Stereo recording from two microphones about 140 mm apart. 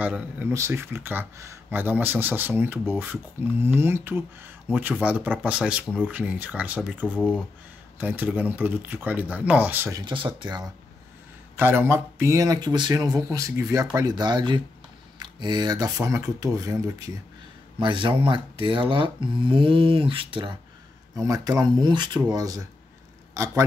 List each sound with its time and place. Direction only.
0.0 s speech: 10° right (ahead or behind)
0.5 s speech: 20° right (ahead or behind)
7.2 s speech: 10° left (ahead or behind)
8.0 s speech: 10° right (ahead or behind)
9.9 s speech: 35° right (ahead or behind)
11.5 s speech: 15° right (ahead or behind)
17.7 s speech: 35° right (ahead or behind)
21.2 s speech: 25° right (ahead or behind)